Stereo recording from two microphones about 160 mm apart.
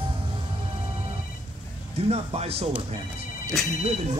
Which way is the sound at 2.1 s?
40° right (ahead or behind).